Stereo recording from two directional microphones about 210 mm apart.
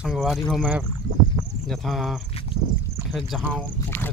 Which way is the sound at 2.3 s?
25° left (ahead or behind).